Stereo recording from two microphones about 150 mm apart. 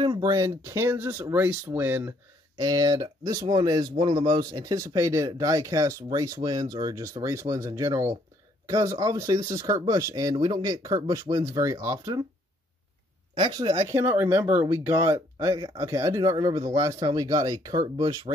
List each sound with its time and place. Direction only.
0.0 s speech: 30° right (ahead or behind)
2.6 s speech: 25° right (ahead or behind)
13.3 s speech: 35° right (ahead or behind)
13.9 s speech: 15° right (ahead or behind)